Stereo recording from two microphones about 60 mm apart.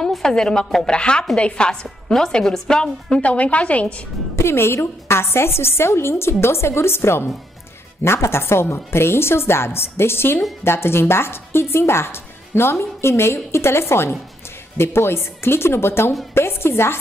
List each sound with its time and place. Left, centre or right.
0.0 s a woman's voice: centre
4.4 s a woman's voice: left